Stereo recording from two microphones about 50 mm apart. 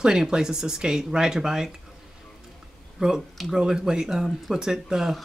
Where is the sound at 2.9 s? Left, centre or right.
Centre.